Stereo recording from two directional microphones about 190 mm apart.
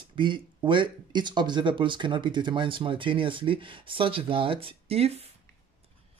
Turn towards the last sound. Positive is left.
turn(degrees=-30)  # may be behind; listen again after turning